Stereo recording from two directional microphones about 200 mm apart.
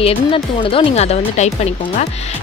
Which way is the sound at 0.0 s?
25° left (ahead or behind).